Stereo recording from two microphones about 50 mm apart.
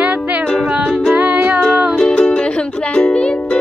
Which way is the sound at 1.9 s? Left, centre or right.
Left.